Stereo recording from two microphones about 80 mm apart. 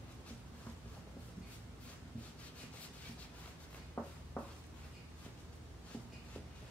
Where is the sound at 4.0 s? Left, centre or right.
Centre.